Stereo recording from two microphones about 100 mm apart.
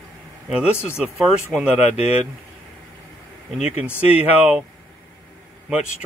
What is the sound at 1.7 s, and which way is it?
Speech, 90° left.